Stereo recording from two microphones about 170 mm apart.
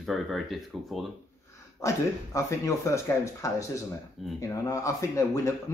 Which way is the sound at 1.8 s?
20° left (ahead or behind).